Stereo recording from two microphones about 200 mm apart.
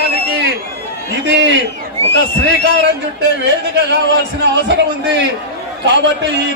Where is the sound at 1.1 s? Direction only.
65° right (ahead or behind).